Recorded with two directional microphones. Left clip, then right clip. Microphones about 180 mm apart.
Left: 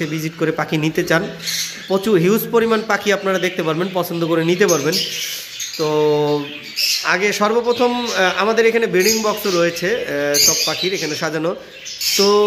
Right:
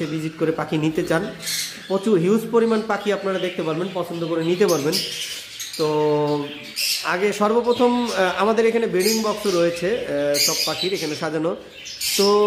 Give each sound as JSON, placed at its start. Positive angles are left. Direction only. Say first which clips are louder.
{"t": 0.0, "sound": "a man's voice", "louder": "left 3 dB", "side_deg": 0}
{"t": 3.8, "sound": "a man's voice", "louder": "left 6 dB", "side_deg": 15}
{"t": 4.5, "sound": "a man's voice", "louder": "left 1 dB", "side_deg": 0}
{"t": 9.8, "sound": "a man's voice", "louder": "left 3 dB", "side_deg": -5}